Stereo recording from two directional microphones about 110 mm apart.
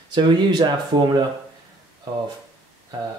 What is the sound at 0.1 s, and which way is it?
Speech, 45° right (ahead or behind).